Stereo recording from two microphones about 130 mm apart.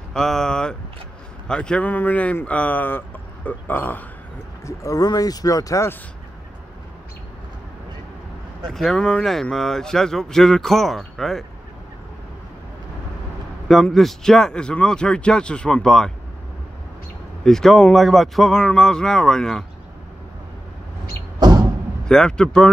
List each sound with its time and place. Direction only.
0.1 s speech: 5° left (ahead or behind)
4.6 s speech: 25° left (ahead or behind)
8.6 s speech: centre (ahead or behind)
13.7 s speech: centre (ahead or behind)
17.5 s speech: 5° left (ahead or behind)
21.4 s door: 35° right (ahead or behind)
22.0 s speech: 5° left (ahead or behind)